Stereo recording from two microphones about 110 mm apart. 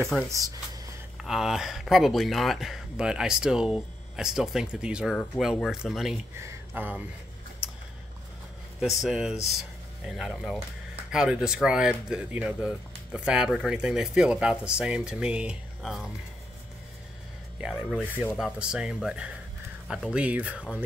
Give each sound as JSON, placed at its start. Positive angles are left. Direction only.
{"t": 0.1, "sound": "speech", "side_deg": -5}
{"t": 6.4, "sound": "speech", "side_deg": -20}
{"t": 8.7, "sound": "speech", "side_deg": 0}
{"t": 17.6, "sound": "speech", "side_deg": -5}